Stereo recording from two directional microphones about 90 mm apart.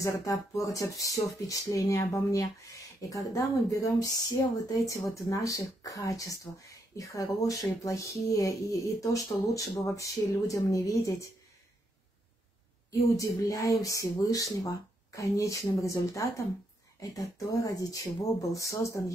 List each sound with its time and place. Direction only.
0.0 s speech: 35° left (ahead or behind)
13.1 s speech: 35° left (ahead or behind)